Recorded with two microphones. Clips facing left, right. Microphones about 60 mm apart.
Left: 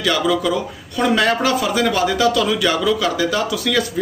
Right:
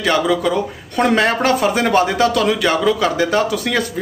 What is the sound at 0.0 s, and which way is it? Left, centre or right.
Speech, right.